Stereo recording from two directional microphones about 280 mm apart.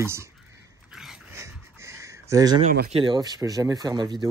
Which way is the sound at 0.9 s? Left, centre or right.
Centre.